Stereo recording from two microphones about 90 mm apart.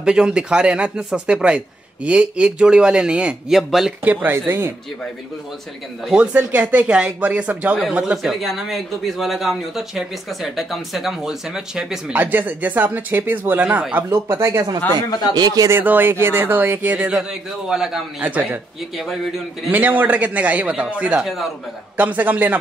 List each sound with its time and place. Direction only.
0.0 s speech: 10° right (ahead or behind)
4.0 s speech: 20° right (ahead or behind)
6.3 s speech: 20° right (ahead or behind)
8.2 s a man's voice: centre (ahead or behind)
12.1 s speech: 20° right (ahead or behind)
14.1 s speech: 30° right (ahead or behind)
15.0 s speech: 45° left (ahead or behind)
15.3 s speech: 45° right (ahead or behind)
15.7 s speech: 20° right (ahead or behind); by 18.0 s 5° right (ahead or behind)
18.2 s speech: 20° right (ahead or behind)
19.7 s speech: 20° right (ahead or behind)
21.2 s a man's voice: centre (ahead or behind)
21.9 s speech: 20° right (ahead or behind)